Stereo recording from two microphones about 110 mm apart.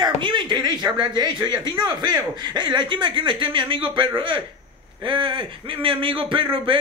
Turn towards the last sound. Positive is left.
turn(degrees=-50)  # may be behind; listen again after turning